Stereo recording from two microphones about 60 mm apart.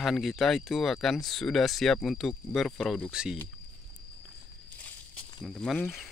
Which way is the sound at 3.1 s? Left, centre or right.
Centre.